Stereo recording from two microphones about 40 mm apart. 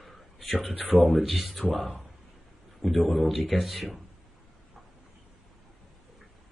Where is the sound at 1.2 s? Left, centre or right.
Centre.